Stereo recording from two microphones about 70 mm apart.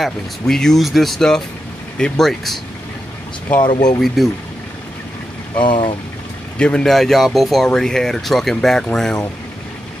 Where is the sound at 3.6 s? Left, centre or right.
Left.